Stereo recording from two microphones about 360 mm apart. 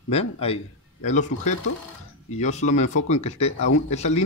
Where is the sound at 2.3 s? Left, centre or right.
Centre.